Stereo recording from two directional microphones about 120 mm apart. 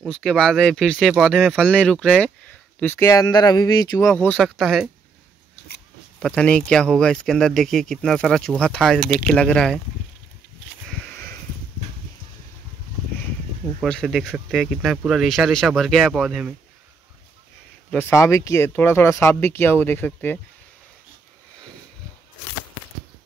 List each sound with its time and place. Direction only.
0.1 s speech: 5° left (ahead or behind)
2.8 s speech: 25° left (ahead or behind)
4.1 s speech: 10° left (ahead or behind)
6.2 s speech: 10° left (ahead or behind)
13.8 s speech: 5° left (ahead or behind)
17.9 s speech: 25° left (ahead or behind)